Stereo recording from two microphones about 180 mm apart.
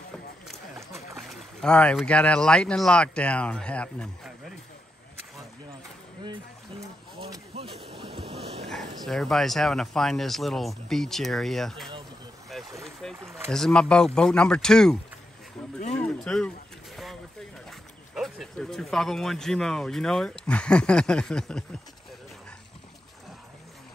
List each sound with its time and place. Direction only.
1.1 s speech: centre (ahead or behind)
7.2 s a sound: 20° right (ahead or behind)
7.5 s speech: 35° right (ahead or behind)
8.0 s ocean: 30° right (ahead or behind)
9.0 s speech: centre (ahead or behind)
12.5 s a sound: centre (ahead or behind)
13.0 s speech: 5° left (ahead or behind)
15.8 s speech: 35° left (ahead or behind)
16.3 s boat: 5° left (ahead or behind)
17.6 s speech: centre (ahead or behind)